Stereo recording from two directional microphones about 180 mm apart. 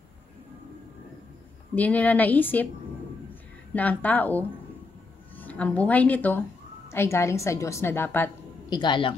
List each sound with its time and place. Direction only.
1.8 s a woman's voice: 10° left (ahead or behind)
3.7 s a woman's voice: 10° left (ahead or behind)
8.6 s speech: 25° left (ahead or behind)